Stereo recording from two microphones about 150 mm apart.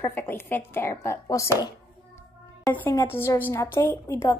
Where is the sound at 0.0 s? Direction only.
15° left (ahead or behind).